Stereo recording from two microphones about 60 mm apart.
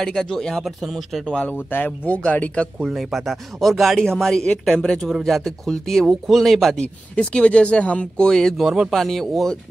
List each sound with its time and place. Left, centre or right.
0.0 s speech: centre
1.4 s speech: left
2.9 s speech: centre
6.8 s speech: centre
8.5 s speech: centre
8.9 s speech: centre